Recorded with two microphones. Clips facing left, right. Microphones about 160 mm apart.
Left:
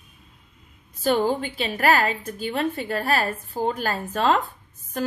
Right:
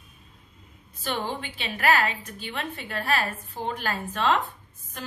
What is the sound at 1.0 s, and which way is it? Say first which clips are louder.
A woman's voice: left 9 dB; 40° left (ahead or behind).